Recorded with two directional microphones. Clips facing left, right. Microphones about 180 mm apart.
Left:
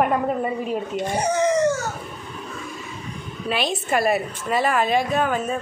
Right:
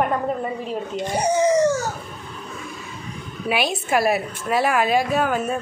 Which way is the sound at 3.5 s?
5° right (ahead or behind).